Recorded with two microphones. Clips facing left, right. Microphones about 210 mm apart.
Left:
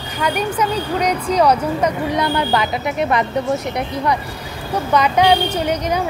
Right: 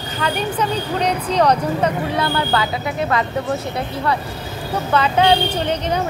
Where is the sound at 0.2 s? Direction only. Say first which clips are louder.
Left 2 dB; 10° left (ahead or behind).